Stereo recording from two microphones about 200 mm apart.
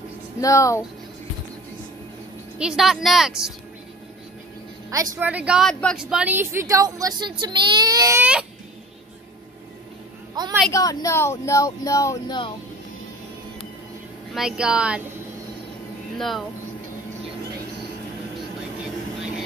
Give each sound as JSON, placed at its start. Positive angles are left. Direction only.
{"t": 0.4, "sound": "speech", "side_deg": 15}
{"t": 2.6, "sound": "speech", "side_deg": 0}
{"t": 4.9, "sound": "a woman's voice", "side_deg": -15}
{"t": 10.4, "sound": "a sound", "side_deg": -20}
{"t": 10.7, "sound": "speech", "side_deg": 15}
{"t": 14.3, "sound": "speech", "side_deg": -5}
{"t": 16.2, "sound": "speech", "side_deg": 0}